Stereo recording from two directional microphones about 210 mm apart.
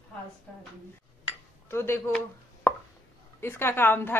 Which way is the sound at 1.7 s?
10° left (ahead or behind).